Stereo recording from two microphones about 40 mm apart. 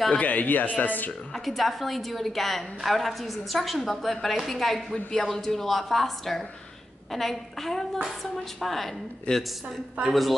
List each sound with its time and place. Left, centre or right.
0.1 s a man's voice: left
1.3 s a woman's voice: centre
9.3 s a woman's voice: left
10.0 s a woman's voice: centre